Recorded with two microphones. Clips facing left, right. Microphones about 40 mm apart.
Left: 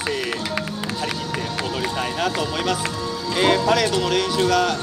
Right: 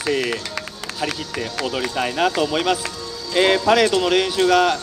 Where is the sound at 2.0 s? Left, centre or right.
Centre.